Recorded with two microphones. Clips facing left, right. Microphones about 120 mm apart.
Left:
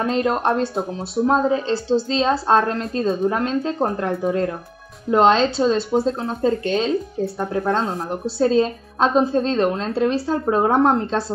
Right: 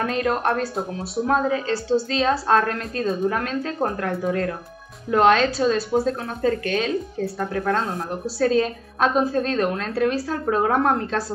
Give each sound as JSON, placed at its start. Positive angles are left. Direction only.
{"t": 0.0, "sound": "speech", "side_deg": 25}